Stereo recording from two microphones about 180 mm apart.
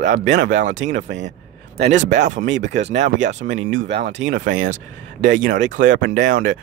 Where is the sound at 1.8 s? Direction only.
40° right (ahead or behind).